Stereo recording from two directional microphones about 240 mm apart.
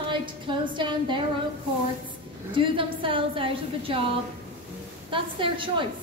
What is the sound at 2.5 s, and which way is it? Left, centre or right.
A woman's voice, right.